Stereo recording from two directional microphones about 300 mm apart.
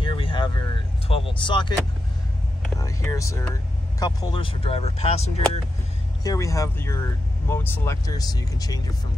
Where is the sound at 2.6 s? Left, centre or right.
Centre.